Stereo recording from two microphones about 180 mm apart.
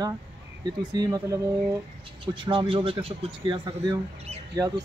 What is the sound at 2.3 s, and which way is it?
Speech, 30° right (ahead or behind).